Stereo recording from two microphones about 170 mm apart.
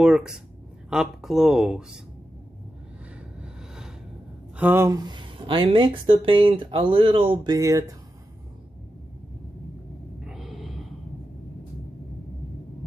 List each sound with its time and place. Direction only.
0.0 s speech: 5° right (ahead or behind)
4.6 s speech: 10° right (ahead or behind)
10.2 s gasp: centre (ahead or behind)